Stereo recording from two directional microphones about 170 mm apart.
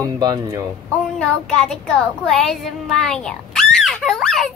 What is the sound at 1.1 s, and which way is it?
Child singing, 5° left (ahead or behind).